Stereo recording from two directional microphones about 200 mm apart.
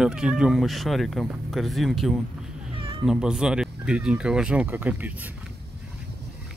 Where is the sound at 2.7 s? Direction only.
25° right (ahead or behind).